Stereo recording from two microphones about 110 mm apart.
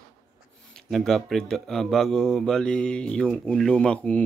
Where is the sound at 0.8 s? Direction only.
5° left (ahead or behind).